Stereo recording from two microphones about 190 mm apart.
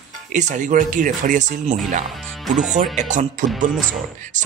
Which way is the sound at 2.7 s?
40° right (ahead or behind).